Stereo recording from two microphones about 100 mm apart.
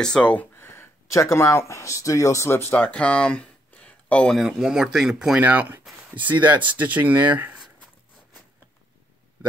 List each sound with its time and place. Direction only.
0.0 s speech: 10° left (ahead or behind)
0.6 s speech: 25° left (ahead or behind)
2.9 s a sound: 10° left (ahead or behind)
4.4 s speech: 5° right (ahead or behind)
5.4 s speech: 15° right (ahead or behind)